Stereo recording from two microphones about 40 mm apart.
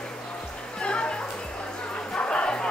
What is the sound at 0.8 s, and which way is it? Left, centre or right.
Music, left.